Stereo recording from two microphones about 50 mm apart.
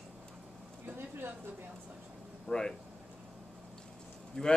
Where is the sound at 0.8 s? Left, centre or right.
Right.